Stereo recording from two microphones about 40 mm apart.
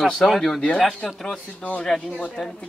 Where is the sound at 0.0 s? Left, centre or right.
Centre.